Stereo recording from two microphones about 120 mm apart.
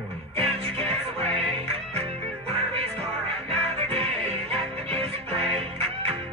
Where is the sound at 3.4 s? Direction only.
55° right (ahead or behind).